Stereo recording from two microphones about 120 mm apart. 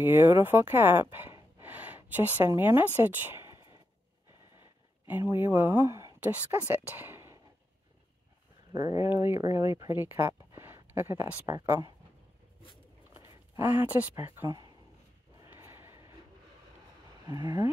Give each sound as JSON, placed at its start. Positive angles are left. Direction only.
{"t": 0.0, "sound": "speech", "side_deg": -15}
{"t": 1.6, "sound": "a sound", "side_deg": -15}
{"t": 3.0, "sound": "speech", "side_deg": -15}
{"t": 5.0, "sound": "speech", "side_deg": -15}
{"t": 8.7, "sound": "speech", "side_deg": -25}
{"t": 13.6, "sound": "speech", "side_deg": -15}
{"t": 14.1, "sound": "speech", "side_deg": -25}
{"t": 15.3, "sound": "neigh", "side_deg": -20}
{"t": 17.3, "sound": "speech", "side_deg": -30}